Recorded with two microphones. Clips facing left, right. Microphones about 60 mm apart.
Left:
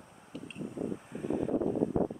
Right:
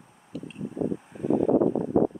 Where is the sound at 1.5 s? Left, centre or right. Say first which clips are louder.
Right 11 dB; right.